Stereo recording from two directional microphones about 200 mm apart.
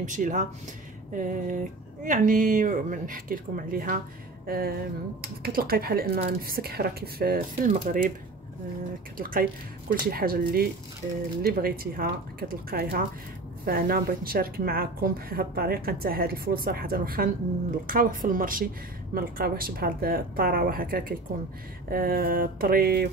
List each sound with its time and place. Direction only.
0.0 s a woman's voice: 40° right (ahead or behind)
9.2 s a woman's voice: 45° right (ahead or behind)